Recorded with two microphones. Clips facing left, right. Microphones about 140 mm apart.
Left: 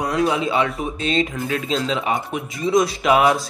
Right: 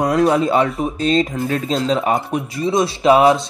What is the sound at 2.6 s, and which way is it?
Speech, 30° right (ahead or behind).